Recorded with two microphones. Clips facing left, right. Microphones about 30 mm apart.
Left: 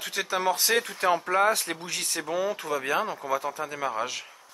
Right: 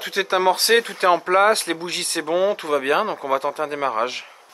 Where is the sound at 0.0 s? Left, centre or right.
Right.